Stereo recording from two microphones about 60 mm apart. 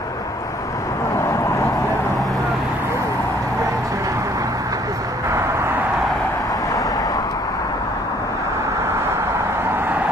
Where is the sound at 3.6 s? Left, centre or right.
Right.